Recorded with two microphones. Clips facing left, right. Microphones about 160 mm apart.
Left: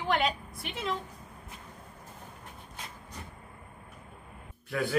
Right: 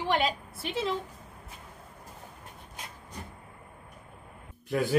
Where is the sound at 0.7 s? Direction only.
30° right (ahead or behind).